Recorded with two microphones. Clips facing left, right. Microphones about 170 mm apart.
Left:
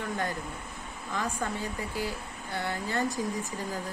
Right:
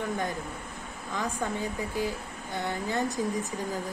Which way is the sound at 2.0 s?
20° right (ahead or behind).